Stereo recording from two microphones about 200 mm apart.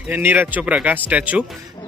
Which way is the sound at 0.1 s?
10° right (ahead or behind).